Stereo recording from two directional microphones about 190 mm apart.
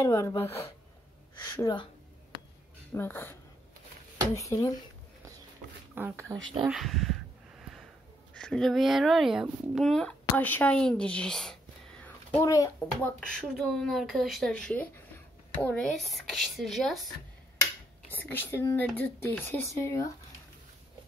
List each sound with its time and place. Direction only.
0.0 s speech: 15° left (ahead or behind)
1.6 s speech: 20° left (ahead or behind)
2.9 s speech: 10° left (ahead or behind)
5.9 s speech: 10° right (ahead or behind)
6.7 s a sound: centre (ahead or behind)
8.4 s a child's voice: 5° left (ahead or behind)
13.3 s speech: 5° left (ahead or behind)
18.1 s speech: 10° left (ahead or behind)